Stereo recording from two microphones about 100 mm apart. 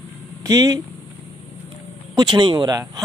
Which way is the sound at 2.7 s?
40° right (ahead or behind).